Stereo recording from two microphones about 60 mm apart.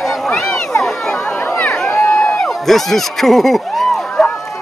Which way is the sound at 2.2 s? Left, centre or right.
Left.